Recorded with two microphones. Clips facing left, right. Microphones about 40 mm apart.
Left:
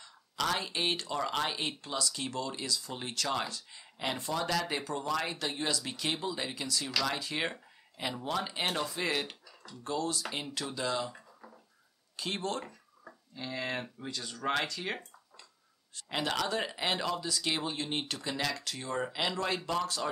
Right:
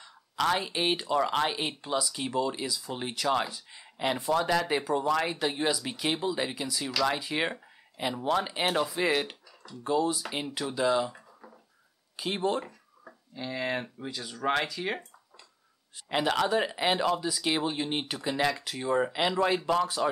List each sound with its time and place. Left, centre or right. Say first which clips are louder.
0.0 s speech: right 5 dB; centre
9.8 s speech: right 6 dB; centre
16.1 s speech: right 6 dB; centre